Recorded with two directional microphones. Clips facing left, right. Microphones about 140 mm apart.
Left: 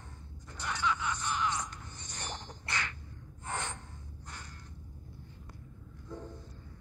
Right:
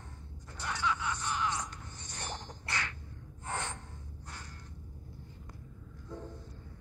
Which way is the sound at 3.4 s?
5° right (ahead or behind).